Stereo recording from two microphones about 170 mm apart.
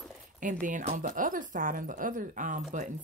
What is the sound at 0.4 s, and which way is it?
Speech, 50° right (ahead or behind).